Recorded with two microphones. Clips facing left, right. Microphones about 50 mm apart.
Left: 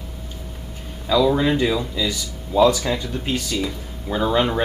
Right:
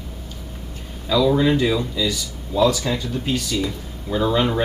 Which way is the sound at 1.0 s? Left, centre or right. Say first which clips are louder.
Even; centre.